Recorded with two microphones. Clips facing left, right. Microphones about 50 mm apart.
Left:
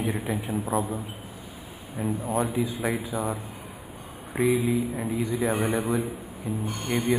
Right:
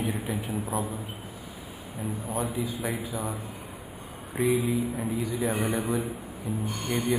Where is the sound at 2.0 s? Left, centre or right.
Centre.